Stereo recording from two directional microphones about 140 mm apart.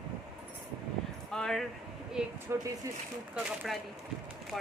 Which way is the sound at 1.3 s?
5° left (ahead or behind).